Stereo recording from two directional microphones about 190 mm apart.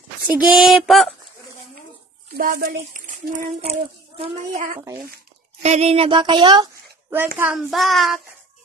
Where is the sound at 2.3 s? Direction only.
50° right (ahead or behind); by 6.7 s 25° right (ahead or behind).